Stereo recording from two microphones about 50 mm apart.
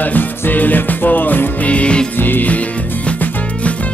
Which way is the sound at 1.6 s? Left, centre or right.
Left.